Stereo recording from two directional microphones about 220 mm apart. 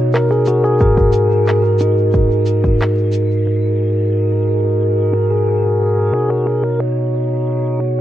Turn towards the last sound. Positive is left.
turn(degrees=0)  # may be behind; listen again after turning